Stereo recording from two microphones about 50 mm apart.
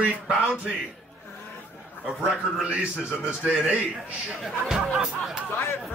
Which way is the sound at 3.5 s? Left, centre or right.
Centre.